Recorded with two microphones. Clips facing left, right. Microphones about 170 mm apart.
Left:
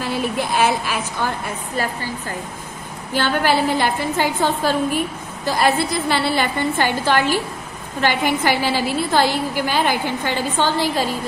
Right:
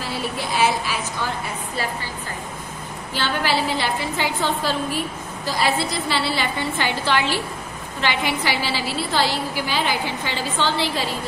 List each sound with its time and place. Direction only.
0.6 s a woman's voice: 55° left (ahead or behind)
3.2 s a woman's voice: 50° left (ahead or behind)